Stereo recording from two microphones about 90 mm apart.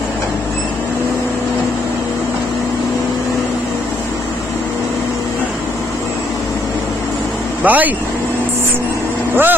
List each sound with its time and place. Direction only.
7.6 s speech: 20° right (ahead or behind)
9.3 s speech: 20° right (ahead or behind)